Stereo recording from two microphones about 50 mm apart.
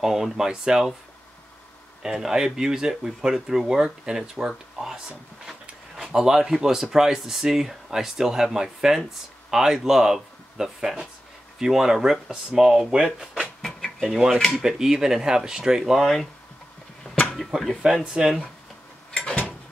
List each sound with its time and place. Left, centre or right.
0.0 s speech: centre
2.0 s speech: centre
13.6 s a sound: centre
14.0 s speech: centre
17.5 s speech: right